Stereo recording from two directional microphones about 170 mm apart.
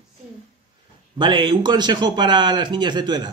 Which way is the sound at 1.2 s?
30° right (ahead or behind).